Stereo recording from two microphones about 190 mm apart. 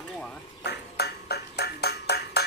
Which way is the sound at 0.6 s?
60° left (ahead or behind).